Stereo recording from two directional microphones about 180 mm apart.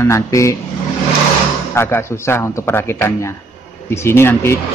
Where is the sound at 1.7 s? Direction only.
15° left (ahead or behind).